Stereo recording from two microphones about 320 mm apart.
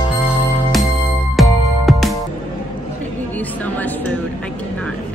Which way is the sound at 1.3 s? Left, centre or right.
Centre.